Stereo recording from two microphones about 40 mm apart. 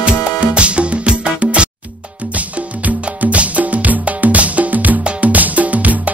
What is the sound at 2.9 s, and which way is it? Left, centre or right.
Music, right.